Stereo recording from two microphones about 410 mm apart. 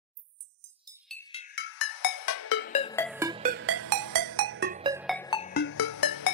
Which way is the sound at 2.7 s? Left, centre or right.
Centre.